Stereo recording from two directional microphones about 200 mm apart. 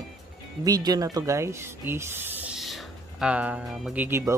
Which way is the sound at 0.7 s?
20° right (ahead or behind).